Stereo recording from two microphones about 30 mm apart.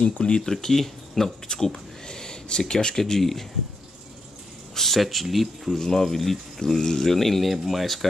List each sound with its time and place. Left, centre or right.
0.2 s speech: left
0.5 s speech: centre
2.0 s a sound: left
2.7 s speech: left
3.0 s speech: centre
4.7 s speech: centre
5.8 s speech: centre